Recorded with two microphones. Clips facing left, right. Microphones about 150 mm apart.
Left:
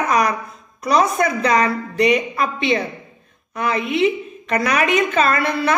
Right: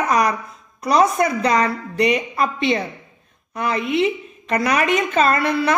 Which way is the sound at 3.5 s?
30° right (ahead or behind).